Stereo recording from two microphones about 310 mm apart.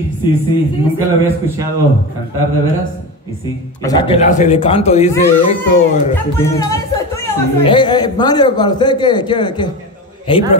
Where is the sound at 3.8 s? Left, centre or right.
Centre.